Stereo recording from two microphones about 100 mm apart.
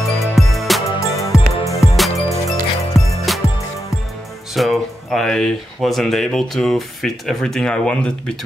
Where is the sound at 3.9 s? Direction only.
Centre (ahead or behind).